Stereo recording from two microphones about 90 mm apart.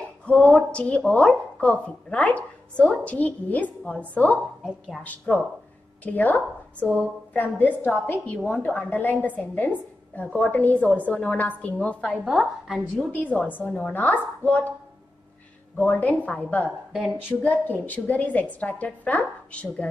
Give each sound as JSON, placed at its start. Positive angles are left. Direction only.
{"t": 0.2, "sound": "a woman's voice", "side_deg": 10}
{"t": 12.3, "sound": "a woman's voice", "side_deg": -5}
{"t": 13.1, "sound": "a woman's voice", "side_deg": 20}
{"t": 15.8, "sound": "a woman's voice", "side_deg": 15}